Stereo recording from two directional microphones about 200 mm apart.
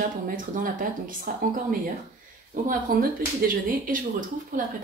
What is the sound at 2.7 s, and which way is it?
Speech, 45° right (ahead or behind).